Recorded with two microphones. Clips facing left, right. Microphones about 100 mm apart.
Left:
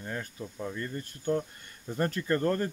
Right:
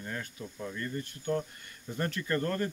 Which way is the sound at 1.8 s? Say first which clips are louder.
Left 4 dB; 30° left (ahead or behind).